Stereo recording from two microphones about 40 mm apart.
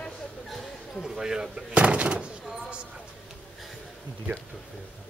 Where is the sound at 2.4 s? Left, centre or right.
Centre.